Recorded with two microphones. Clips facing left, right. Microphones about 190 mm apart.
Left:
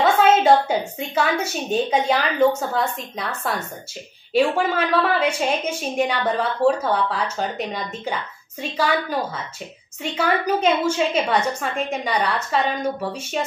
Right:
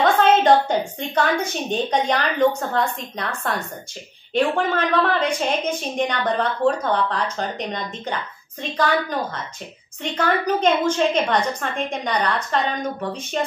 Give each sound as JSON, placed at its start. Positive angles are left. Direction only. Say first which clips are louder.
{"t": 0.0, "sound": "a woman's voice", "louder": "even", "side_deg": 5}